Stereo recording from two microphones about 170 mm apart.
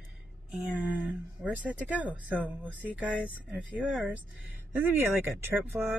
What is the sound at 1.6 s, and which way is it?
Speech, 10° right (ahead or behind).